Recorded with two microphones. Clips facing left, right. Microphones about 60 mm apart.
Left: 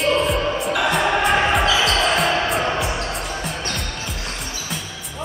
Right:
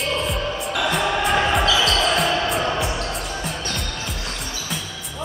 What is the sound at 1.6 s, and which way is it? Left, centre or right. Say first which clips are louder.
Basketball bounce: left 1 dB; left.